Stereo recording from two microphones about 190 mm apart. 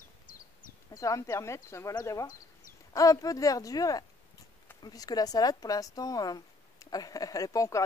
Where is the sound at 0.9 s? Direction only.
15° left (ahead or behind).